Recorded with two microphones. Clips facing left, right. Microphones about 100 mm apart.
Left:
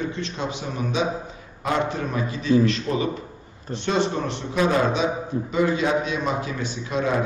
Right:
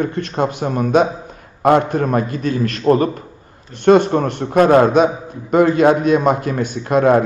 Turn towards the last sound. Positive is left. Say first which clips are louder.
# right 10 dB
turn(degrees=-55)  # may be behind; listen again after turning